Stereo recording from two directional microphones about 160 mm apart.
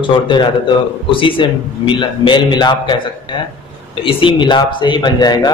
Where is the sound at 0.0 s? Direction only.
30° left (ahead or behind).